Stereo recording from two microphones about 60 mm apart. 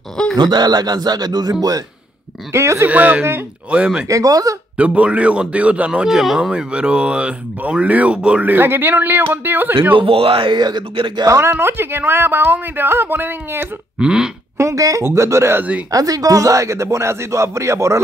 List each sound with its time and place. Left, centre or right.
0.2 s groan: centre
0.7 s speech: right
2.5 s speech: right
2.9 s a man's voice: right
4.1 s speech: right
4.7 s a man's voice: right; by 6.5 s centre
6.5 s speech: centre
8.5 s speech: right
11.2 s speech: right
11.5 s speech: right
13.9 s speech: centre
14.6 s speech: right
15.9 s speech: right